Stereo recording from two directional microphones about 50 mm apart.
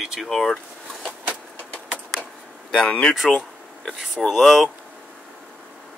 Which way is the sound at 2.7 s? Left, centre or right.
Centre.